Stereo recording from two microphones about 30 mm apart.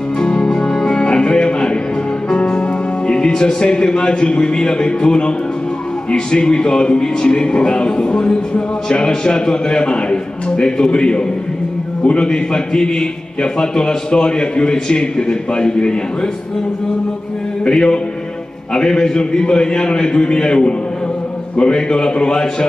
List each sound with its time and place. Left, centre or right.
0.2 s music: left
3.1 s music: left
3.9 s a man's voice: left
6.3 s a man's voice: left
12.3 s a man's voice: left
17.6 s a man's voice: left